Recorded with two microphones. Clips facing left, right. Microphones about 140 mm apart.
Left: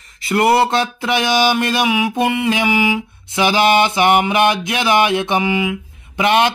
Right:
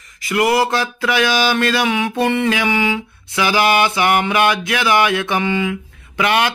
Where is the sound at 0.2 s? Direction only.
30° left (ahead or behind).